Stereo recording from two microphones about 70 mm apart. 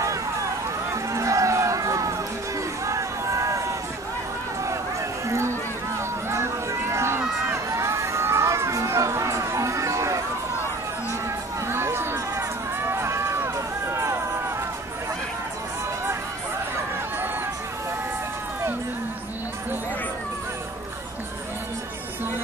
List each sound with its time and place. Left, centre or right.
0.0 s vehicle: right
1.1 s a sound: right
6.3 s run: right
11.6 s run: right